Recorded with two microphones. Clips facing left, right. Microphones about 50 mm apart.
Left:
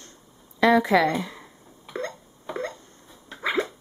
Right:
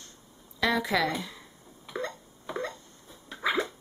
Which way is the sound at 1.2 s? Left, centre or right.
Left.